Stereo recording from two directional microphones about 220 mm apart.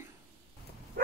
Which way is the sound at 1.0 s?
45° right (ahead or behind).